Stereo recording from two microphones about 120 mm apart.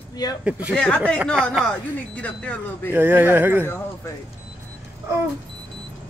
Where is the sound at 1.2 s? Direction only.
5° left (ahead or behind).